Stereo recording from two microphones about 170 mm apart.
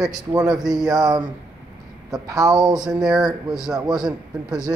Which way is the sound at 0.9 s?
20° right (ahead or behind).